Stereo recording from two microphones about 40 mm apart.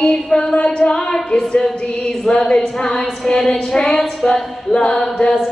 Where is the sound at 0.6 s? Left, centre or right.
Left.